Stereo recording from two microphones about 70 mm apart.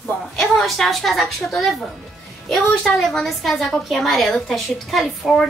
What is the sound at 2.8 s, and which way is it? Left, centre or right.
A woman's voice, centre.